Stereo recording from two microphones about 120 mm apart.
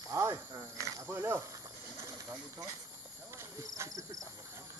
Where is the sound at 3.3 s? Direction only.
25° right (ahead or behind).